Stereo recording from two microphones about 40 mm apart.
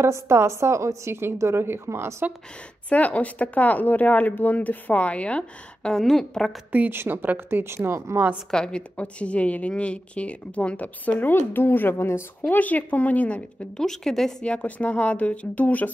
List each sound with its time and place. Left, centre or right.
0.0 s speech: right
2.9 s speech: left
5.9 s a woman's voice: centre
6.9 s speech: right
7.6 s speech: right
8.5 s a woman's voice: centre
8.9 s speech: left
11.2 s speech: left
12.4 s speech: left
13.7 s a woman's voice: centre
14.4 s speech: left